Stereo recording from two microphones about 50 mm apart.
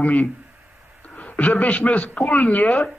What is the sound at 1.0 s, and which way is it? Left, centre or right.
A man's voice, left.